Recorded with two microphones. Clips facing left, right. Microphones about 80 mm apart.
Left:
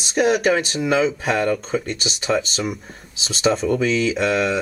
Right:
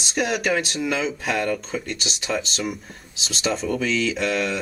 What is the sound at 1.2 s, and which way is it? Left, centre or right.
Speech, left.